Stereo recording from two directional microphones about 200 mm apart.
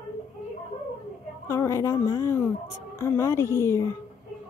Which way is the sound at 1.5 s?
15° left (ahead or behind).